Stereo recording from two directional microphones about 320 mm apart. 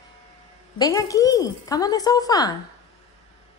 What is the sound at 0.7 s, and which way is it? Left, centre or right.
A woman's voice, centre.